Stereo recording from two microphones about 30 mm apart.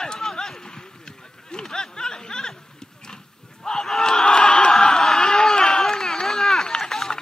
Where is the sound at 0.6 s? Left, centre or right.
Left.